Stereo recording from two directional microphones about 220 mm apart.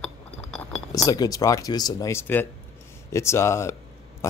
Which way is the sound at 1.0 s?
15° left (ahead or behind).